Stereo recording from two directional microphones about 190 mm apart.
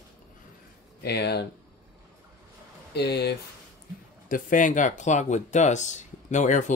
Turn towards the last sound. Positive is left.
turn(degrees=40)  # may be behind; listen again after turning